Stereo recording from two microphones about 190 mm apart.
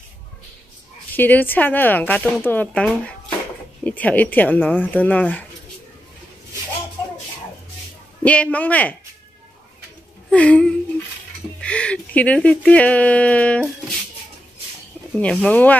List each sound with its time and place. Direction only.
1.1 s speech: 10° left (ahead or behind)
8.2 s speech: 5° left (ahead or behind)
10.3 s speech: 5° left (ahead or behind)
11.6 s a sound: 5° left (ahead or behind)
12.4 s speech: 5° left (ahead or behind)
15.1 s speech: 5° left (ahead or behind)